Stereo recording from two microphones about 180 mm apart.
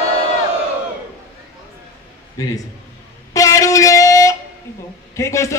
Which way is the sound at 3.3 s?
20° left (ahead or behind).